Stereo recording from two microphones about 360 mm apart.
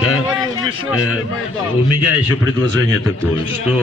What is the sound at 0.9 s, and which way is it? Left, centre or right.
Speech, left.